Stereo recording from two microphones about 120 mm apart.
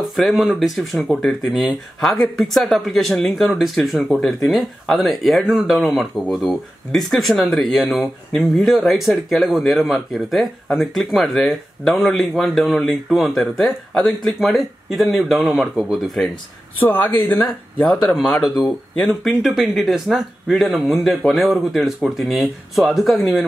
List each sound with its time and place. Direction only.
0.1 s speech: centre (ahead or behind)
16.8 s speech: 15° left (ahead or behind)
17.8 s speech: 5° left (ahead or behind)